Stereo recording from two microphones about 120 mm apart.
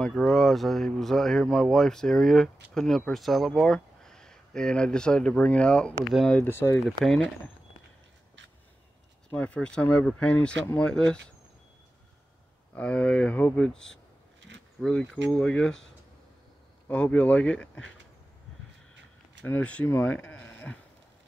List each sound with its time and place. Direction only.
0.0 s speech: centre (ahead or behind)
6.4 s speech: 20° left (ahead or behind)
7.1 s speech: centre (ahead or behind)
9.3 s speech: 10° left (ahead or behind)
12.7 s speech: 10° left (ahead or behind)
16.8 s speech: 10° left (ahead or behind)
19.4 s speech: 15° left (ahead or behind)